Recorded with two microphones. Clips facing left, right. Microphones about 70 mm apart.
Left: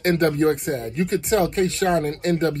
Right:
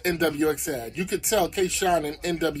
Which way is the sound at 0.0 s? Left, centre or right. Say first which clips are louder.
Left 4 dB; left.